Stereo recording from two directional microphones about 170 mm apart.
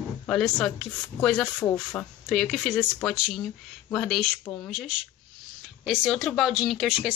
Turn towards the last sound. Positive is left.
turn(degrees=0)  # may be behind; listen again after turning